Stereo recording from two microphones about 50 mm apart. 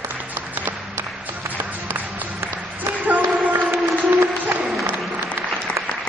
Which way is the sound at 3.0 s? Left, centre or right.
Right.